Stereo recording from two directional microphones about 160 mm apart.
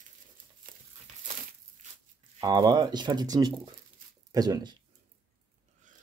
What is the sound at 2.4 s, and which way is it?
Speech, 25° right (ahead or behind).